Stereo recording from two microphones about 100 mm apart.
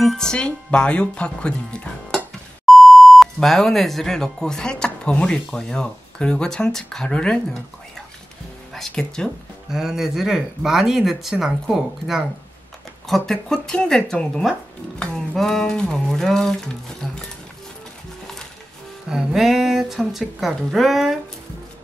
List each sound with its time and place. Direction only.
0.0 s speech: 5° left (ahead or behind)
8.7 s speech: 5° left (ahead or behind)
19.0 s speech: 5° right (ahead or behind)